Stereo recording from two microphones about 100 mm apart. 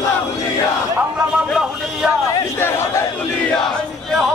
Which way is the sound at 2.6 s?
25° left (ahead or behind).